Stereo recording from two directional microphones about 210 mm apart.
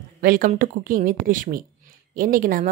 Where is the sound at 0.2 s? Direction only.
40° right (ahead or behind).